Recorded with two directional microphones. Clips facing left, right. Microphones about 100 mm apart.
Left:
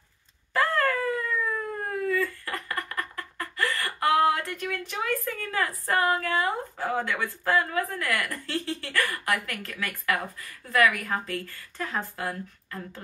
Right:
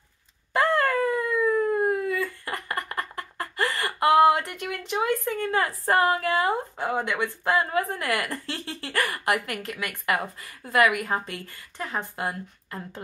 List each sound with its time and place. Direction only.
0.5 s dog: 20° right (ahead or behind)
1.4 s a sound: 25° right (ahead or behind)
6.9 s speech: 20° right (ahead or behind)